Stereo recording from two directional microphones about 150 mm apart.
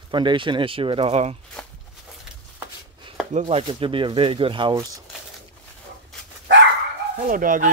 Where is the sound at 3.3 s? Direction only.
45° right (ahead or behind).